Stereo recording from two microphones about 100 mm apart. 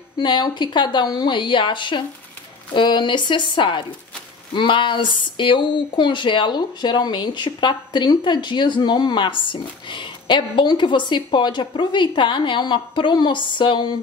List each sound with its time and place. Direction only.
0.2 s speech: 50° left (ahead or behind)